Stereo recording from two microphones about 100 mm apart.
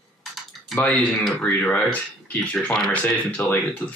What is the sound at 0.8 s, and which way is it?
Speech, 15° left (ahead or behind).